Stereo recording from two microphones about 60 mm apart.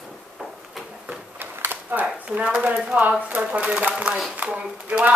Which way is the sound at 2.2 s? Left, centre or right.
Centre.